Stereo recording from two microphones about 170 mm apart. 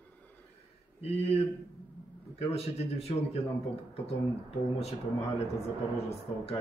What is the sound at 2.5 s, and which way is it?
Speech, 35° left (ahead or behind).